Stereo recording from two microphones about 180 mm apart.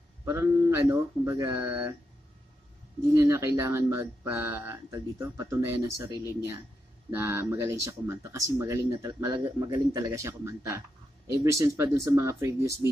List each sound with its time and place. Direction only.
0.2 s speech: 15° right (ahead or behind)
3.3 s speech: 15° right (ahead or behind)